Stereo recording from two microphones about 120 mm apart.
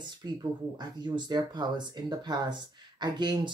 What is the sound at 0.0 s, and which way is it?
Speech, 35° right (ahead or behind).